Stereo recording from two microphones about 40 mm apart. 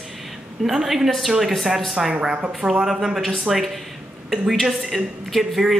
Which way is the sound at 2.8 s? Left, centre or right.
Centre.